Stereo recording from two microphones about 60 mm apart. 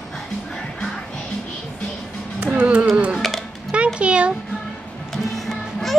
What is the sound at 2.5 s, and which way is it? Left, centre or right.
Music, right.